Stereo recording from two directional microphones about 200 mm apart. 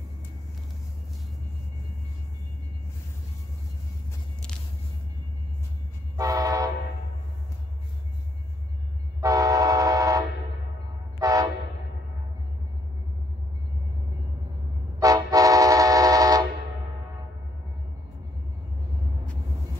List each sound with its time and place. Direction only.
6.1 s train: 15° right (ahead or behind)
9.2 s train: 15° right (ahead or behind)
15.0 s vehicle: 15° right (ahead or behind)